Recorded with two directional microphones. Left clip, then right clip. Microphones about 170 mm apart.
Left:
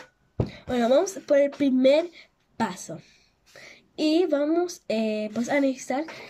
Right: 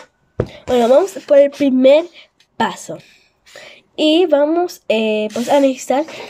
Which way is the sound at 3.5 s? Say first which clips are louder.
Right 11 dB; 50° right (ahead or behind).